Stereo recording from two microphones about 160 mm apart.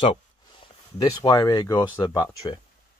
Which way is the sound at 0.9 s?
25° left (ahead or behind).